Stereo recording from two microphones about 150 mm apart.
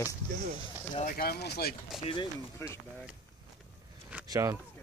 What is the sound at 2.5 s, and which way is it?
Speech, 20° left (ahead or behind).